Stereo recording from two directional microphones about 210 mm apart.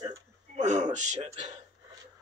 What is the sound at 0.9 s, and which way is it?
Music, 35° right (ahead or behind).